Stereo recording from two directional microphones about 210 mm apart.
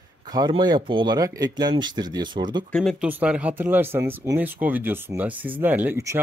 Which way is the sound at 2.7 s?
Centre (ahead or behind).